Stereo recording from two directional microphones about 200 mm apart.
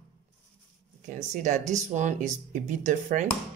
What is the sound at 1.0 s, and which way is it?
Speech, 35° right (ahead or behind).